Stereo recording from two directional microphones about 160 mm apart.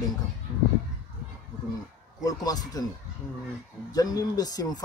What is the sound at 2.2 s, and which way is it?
Speech, 25° left (ahead or behind).